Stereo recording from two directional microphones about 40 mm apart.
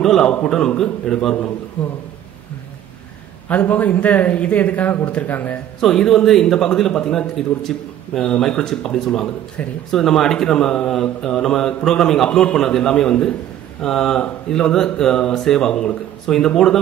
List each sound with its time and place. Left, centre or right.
0.0 s speech: centre
0.3 s a man's voice: left
1.8 s a man's voice: left
3.4 s a man's voice: left
5.8 s speech: centre
10.9 s speech: centre
12.3 s a man's voice: left
12.5 s speech: centre